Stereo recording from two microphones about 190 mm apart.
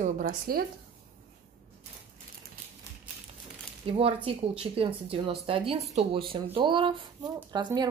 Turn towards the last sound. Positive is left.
turn(degrees=-20)  # may be behind; listen again after turning